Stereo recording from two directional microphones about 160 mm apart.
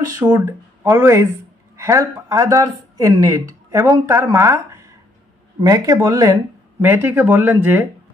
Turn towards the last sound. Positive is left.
turn(degrees=-15)  # may be behind; listen again after turning